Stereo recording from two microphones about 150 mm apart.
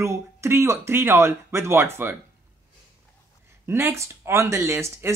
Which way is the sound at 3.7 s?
15° right (ahead or behind).